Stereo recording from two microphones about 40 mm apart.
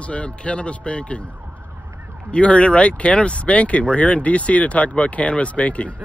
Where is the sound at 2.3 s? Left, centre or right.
Left.